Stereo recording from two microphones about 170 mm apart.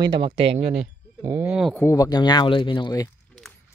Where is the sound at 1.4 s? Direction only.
5° right (ahead or behind).